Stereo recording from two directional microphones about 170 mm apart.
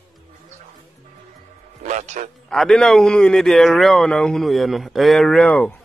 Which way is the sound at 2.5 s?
5° left (ahead or behind).